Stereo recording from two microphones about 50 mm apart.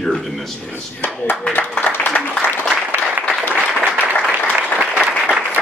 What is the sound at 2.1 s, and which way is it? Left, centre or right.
Applause, left.